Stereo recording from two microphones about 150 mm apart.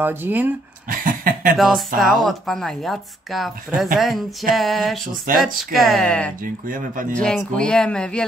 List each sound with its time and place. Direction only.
0.0 s speech: 15° right (ahead or behind)
0.8 s a sound: 70° right (ahead or behind)
2.0 s speech: centre (ahead or behind)
6.4 s speech: 65° right (ahead or behind)
7.2 s speech: 5° left (ahead or behind)